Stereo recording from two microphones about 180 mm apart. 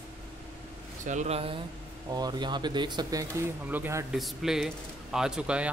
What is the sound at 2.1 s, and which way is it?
Speech, 20° right (ahead or behind).